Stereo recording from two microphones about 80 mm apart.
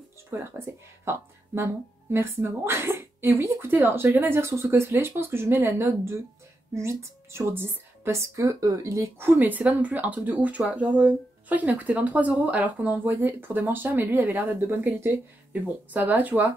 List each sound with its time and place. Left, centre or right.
0.3 s speech: right